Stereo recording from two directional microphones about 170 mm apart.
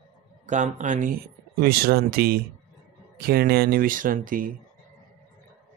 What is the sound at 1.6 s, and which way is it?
Speech, 65° right (ahead or behind).